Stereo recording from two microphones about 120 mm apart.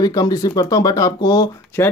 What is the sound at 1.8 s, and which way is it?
Speech, 20° left (ahead or behind).